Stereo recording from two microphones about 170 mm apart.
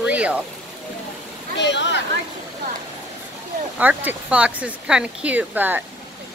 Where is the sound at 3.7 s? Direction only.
10° right (ahead or behind).